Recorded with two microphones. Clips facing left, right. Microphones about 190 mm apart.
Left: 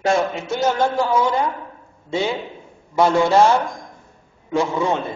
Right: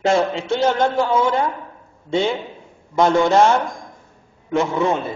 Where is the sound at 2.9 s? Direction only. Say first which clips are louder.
Right 1 dB; 10° left (ahead or behind).